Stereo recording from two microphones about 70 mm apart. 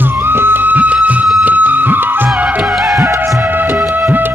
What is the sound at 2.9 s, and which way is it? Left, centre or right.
Music, right.